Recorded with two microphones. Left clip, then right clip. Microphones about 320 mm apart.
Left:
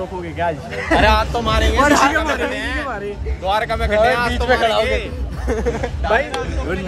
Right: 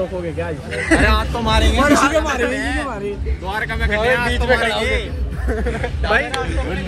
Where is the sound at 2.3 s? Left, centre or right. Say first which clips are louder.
Right 1 dB; centre.